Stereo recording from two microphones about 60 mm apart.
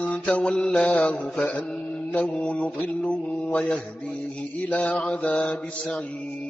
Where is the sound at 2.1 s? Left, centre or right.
Left.